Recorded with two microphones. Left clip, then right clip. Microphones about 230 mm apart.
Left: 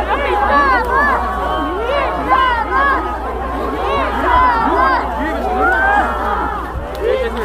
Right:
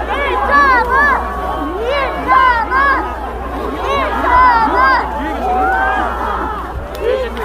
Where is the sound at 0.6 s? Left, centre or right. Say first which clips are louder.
Right 6 dB; right.